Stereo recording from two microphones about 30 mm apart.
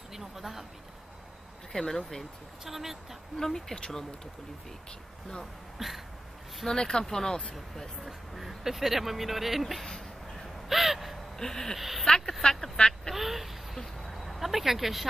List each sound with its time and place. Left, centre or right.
0.1 s a sound: centre
1.7 s speech: left
2.6 s speech: centre
3.3 s speech: centre
5.8 s a sound: centre
6.7 s speech: left
7.5 s speech: centre
8.4 s speech: centre
10.7 s gasp: centre
11.3 s speech: centre
13.1 s quack: centre
13.7 s a sound: centre